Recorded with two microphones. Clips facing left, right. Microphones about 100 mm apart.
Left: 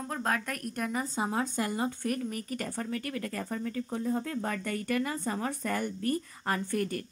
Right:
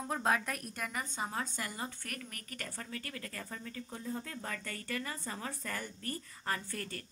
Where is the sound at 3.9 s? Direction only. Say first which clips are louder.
Left 9 dB; 65° left (ahead or behind).